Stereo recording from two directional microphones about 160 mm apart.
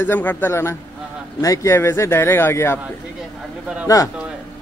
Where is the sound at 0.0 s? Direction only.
10° left (ahead or behind).